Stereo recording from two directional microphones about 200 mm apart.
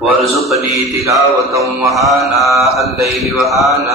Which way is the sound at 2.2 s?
Centre (ahead or behind).